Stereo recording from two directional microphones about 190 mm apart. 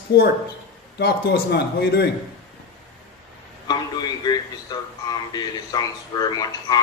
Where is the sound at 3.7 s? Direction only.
20° left (ahead or behind).